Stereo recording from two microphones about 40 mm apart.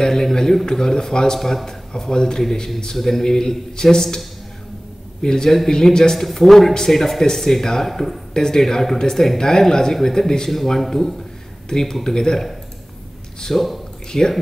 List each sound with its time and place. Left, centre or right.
0.0 s a sound: centre
0.7 s speech: centre
5.2 s speech: centre